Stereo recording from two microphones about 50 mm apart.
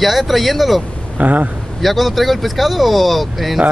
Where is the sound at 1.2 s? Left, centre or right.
Right.